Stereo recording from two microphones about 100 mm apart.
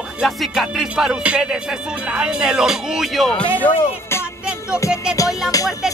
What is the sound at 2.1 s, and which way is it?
Speech, 10° right (ahead or behind).